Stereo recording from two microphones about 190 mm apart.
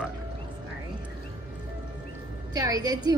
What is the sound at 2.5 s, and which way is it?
Speech, 20° right (ahead or behind).